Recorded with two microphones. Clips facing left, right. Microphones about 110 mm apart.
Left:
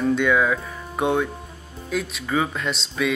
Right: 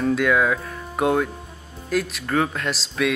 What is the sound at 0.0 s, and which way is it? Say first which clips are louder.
Speech: even; centre (ahead or behind).